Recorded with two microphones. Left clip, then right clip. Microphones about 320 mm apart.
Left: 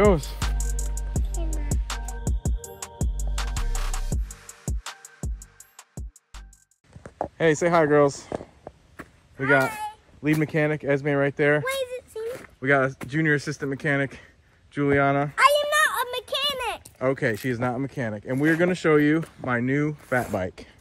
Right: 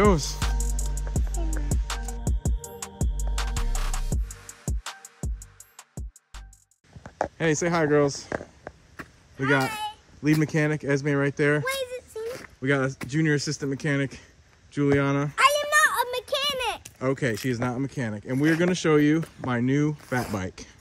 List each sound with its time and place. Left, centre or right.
0.0 s music: centre
7.3 s speech: centre
8.3 s a sound: centre
8.9 s speech: centre
15.3 s a sound: centre
16.6 s speech: centre